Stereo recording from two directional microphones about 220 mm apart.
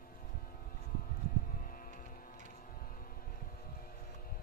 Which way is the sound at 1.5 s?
40° left (ahead or behind).